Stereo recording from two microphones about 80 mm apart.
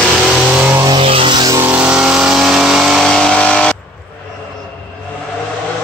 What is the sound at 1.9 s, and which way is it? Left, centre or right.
Vehicle, centre.